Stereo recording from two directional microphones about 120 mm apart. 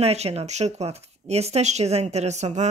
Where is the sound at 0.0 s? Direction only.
60° right (ahead or behind).